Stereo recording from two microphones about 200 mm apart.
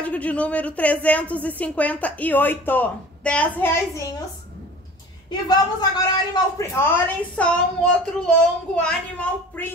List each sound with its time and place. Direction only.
0.0 s a woman's voice: 5° left (ahead or behind)
5.5 s a woman's voice: 20° left (ahead or behind)